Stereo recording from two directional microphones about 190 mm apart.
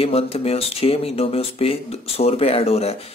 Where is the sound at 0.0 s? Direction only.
30° left (ahead or behind).